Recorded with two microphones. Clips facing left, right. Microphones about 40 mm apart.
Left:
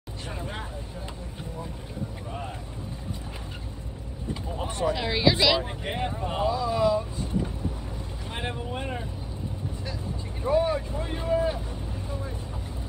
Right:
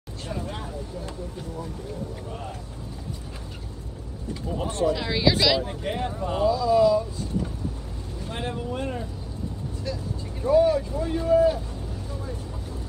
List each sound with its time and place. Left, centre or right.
4.6 s speech: left
4.9 s speech: centre; by 7.0 s left
8.3 s speech: left
10.4 s speech: left